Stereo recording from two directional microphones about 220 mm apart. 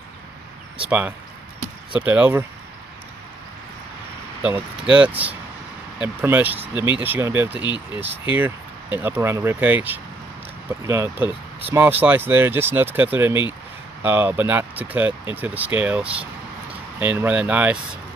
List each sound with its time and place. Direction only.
0.8 s speech: 5° right (ahead or behind)
4.4 s speech: 5° right (ahead or behind)
7.6 s speech: 20° left (ahead or behind)
8.0 s speech: 10° right (ahead or behind)